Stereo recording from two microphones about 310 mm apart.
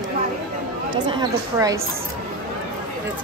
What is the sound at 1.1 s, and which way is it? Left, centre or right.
Speech, centre.